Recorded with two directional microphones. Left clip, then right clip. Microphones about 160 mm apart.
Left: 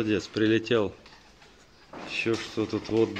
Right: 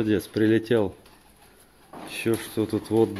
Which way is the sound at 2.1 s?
70° right (ahead or behind).